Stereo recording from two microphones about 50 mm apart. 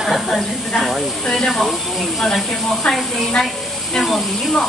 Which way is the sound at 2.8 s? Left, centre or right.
Centre.